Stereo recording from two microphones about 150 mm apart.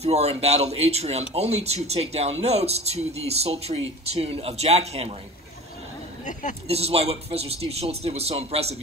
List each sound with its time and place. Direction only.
0.0 s speech: 45° right (ahead or behind)
6.7 s speech: 40° right (ahead or behind)